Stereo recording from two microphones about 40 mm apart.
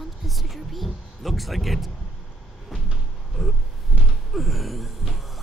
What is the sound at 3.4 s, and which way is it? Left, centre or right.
Speech, centre.